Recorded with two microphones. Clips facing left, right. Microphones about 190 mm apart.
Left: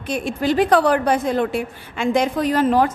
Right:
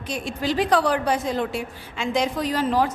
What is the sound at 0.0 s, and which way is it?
A woman's voice, 55° left (ahead or behind).